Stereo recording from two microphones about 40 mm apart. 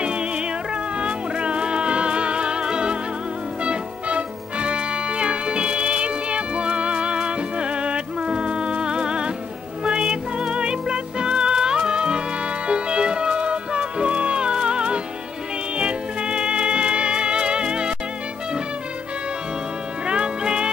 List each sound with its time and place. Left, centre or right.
0.0 s music: right
20.1 s music: right